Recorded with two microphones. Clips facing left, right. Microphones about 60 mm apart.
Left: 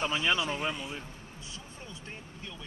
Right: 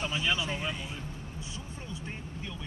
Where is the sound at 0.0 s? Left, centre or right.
Left.